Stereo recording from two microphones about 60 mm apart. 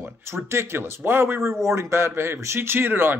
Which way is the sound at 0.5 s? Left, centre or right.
Right.